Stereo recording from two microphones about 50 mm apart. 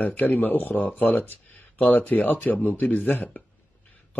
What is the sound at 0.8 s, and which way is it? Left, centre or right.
Speech, left.